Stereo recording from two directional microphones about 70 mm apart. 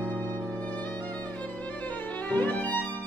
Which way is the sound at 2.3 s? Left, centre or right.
Left.